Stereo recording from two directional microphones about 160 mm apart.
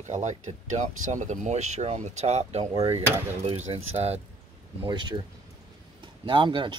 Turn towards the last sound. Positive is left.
turn(degrees=-30)  # may be behind; listen again after turning